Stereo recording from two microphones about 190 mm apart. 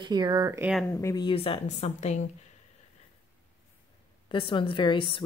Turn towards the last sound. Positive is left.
turn(degrees=25)  # may be behind; listen again after turning